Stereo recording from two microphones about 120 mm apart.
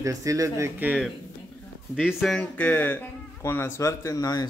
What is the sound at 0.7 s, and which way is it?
Speech, 15° right (ahead or behind).